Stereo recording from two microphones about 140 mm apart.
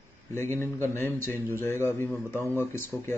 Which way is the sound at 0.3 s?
20° left (ahead or behind).